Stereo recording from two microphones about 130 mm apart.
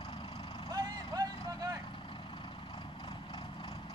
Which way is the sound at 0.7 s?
30° right (ahead or behind).